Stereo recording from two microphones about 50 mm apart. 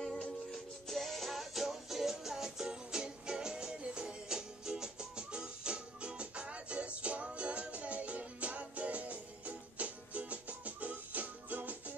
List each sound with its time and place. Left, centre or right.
0.0 s music: centre; by 11.7 s right